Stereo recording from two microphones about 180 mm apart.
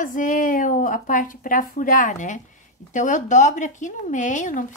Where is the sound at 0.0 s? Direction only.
45° left (ahead or behind).